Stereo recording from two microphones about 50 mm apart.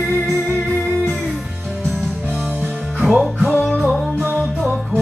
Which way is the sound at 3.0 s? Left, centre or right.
Centre.